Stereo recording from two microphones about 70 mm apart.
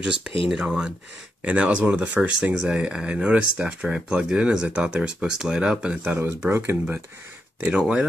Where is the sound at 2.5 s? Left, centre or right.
Centre.